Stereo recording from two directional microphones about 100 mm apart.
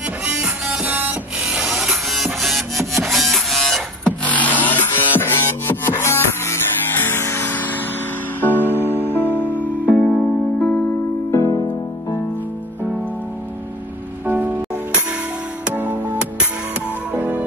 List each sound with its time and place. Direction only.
0.2 s printer: 10° right (ahead or behind)
2.9 s music: centre (ahead or behind); by 11.0 s 15° left (ahead or behind)
11.3 s music: 30° left (ahead or behind)
14.2 s music: 20° right (ahead or behind)
15.6 s music: 20° right (ahead or behind)